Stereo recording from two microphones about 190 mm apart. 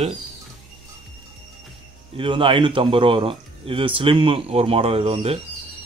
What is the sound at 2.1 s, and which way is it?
Speech, 25° right (ahead or behind).